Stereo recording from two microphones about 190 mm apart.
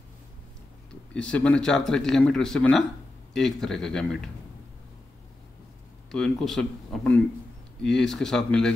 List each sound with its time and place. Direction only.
1.1 s a man's voice: 5° left (ahead or behind)
6.1 s a man's voice: centre (ahead or behind)